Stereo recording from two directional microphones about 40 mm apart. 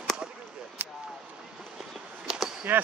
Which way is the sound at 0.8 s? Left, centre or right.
Right.